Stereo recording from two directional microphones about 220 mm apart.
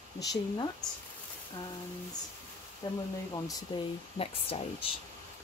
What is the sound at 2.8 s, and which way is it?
Speech, 20° left (ahead or behind).